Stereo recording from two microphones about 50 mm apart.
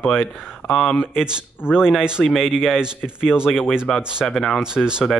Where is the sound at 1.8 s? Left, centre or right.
Centre.